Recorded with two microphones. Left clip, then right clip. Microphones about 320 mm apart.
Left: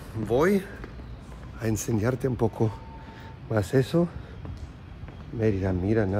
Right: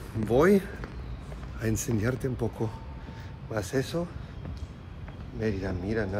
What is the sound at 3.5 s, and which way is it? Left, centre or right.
Speech, left.